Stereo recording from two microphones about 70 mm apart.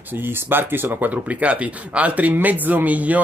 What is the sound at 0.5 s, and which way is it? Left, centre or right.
Speech, right.